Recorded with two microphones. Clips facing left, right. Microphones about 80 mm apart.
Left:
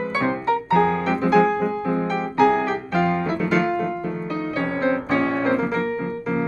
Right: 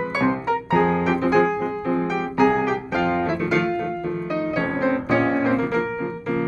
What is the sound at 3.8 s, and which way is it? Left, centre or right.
Music, centre.